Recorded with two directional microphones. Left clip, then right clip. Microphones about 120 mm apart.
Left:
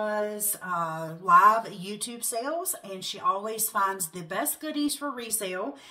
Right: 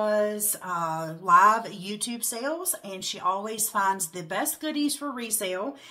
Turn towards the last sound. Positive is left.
turn(degrees=-40)  # may be behind; listen again after turning